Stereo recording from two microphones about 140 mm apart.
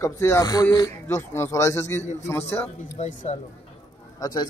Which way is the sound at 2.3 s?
20° left (ahead or behind).